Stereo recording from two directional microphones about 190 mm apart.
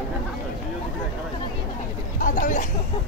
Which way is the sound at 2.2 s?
45° left (ahead or behind).